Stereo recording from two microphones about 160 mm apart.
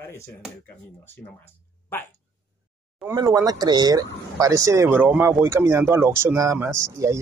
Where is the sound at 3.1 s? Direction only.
20° right (ahead or behind).